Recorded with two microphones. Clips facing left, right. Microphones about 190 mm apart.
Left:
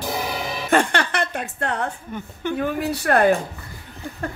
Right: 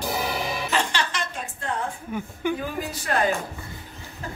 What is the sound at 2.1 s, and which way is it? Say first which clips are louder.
Speech: right 1 dB; 10° right (ahead or behind).